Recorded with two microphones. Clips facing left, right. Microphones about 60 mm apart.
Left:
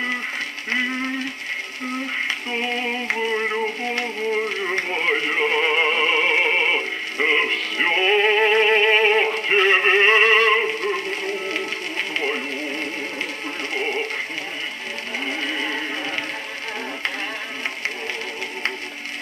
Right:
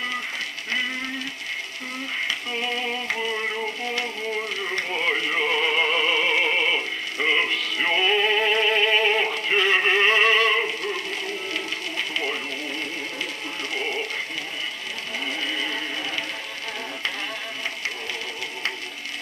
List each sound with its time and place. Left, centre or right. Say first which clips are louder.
2.2 s synthetic singing: left 3 dB; left
10.8 s music: left 4 dB; left
13.7 s synthetic singing: left 4 dB; left
15.2 s a sound: left 2 dB; left